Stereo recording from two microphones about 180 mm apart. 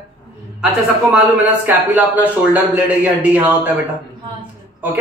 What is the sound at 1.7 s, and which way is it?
A man's voice, 10° right (ahead or behind).